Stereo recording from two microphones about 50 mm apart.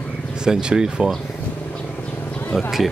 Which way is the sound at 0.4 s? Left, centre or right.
Centre.